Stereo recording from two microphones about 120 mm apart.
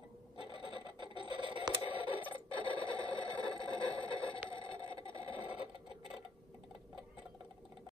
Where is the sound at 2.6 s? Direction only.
40° left (ahead or behind).